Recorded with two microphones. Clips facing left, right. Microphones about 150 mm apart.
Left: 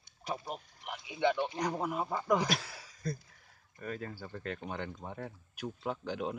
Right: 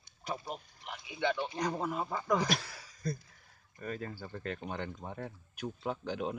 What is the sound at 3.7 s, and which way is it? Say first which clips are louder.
Speech: right 1 dB; centre (ahead or behind).